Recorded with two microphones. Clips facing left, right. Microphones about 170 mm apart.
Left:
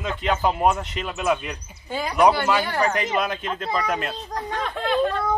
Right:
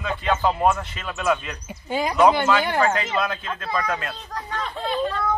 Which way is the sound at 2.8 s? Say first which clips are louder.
Even; 15° left (ahead or behind).